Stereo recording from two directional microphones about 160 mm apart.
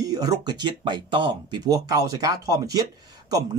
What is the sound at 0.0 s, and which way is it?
Speech, 25° right (ahead or behind).